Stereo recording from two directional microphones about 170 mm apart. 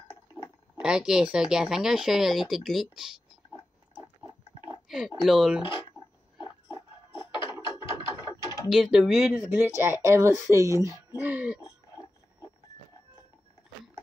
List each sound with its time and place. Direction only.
0.7 s speech: 5° right (ahead or behind)
4.8 s speech: centre (ahead or behind)
5.6 s speech: 30° left (ahead or behind)
7.2 s a sound: 30° left (ahead or behind)
8.6 s speech: 5° right (ahead or behind)
9.8 s speech: 15° right (ahead or behind)
11.6 s a sound: 20° left (ahead or behind)